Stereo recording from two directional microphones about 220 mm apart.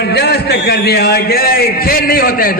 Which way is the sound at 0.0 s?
45° left (ahead or behind).